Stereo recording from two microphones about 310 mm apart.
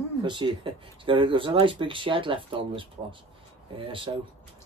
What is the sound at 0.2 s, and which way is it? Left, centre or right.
Speech, centre.